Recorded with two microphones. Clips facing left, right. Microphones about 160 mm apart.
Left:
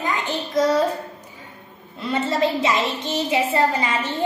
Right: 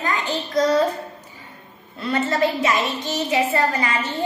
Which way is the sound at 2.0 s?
20° left (ahead or behind).